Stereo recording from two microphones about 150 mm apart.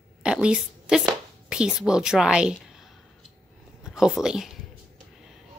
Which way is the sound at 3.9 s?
5° right (ahead or behind).